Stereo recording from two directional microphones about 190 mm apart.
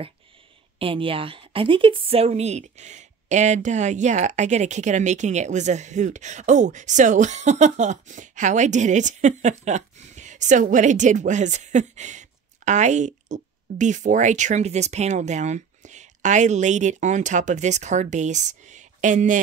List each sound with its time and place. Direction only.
0.7 s a woman's voice: 30° right (ahead or behind)